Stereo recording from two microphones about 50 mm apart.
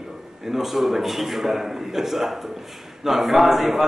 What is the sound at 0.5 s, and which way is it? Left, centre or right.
A man's voice, centre.